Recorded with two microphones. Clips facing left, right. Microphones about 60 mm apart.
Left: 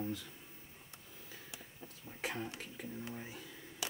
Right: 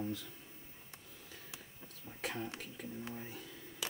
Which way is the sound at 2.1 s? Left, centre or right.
Centre.